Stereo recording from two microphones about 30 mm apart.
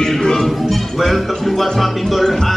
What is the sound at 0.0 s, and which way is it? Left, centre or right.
Music, centre.